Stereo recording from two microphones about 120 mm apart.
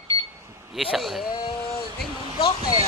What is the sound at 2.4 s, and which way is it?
Speech, 55° left (ahead or behind).